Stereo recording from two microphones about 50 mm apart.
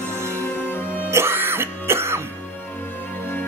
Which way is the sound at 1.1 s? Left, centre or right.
Right.